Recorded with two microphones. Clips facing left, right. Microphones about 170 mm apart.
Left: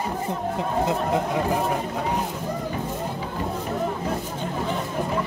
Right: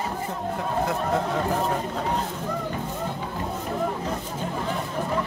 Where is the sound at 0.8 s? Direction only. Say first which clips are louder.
Left 1 dB; 20° left (ahead or behind).